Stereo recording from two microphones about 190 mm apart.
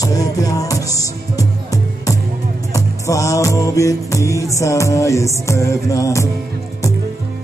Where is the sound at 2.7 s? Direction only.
15° left (ahead or behind).